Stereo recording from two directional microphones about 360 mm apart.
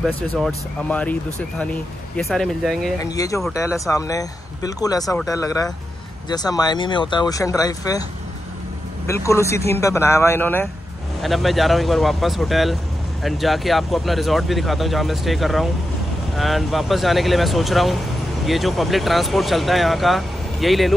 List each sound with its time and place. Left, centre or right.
0.0 s speech: centre
9.0 s speech: centre